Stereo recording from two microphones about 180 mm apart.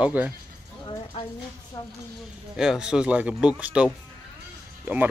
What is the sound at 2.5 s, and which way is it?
Speech, 5° right (ahead or behind).